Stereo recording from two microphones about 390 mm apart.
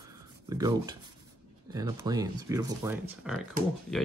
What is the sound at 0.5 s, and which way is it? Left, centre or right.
Speech, centre.